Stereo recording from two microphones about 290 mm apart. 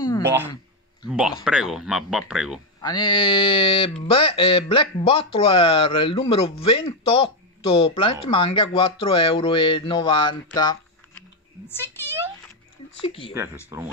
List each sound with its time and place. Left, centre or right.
0.2 s speech: centre
2.8 s speech: centre
13.0 s speech: centre
13.7 s speech: centre